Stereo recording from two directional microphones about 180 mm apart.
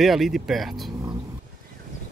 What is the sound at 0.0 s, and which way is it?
Speech, centre (ahead or behind).